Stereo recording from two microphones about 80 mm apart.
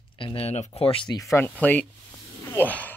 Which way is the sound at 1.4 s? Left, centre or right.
Left.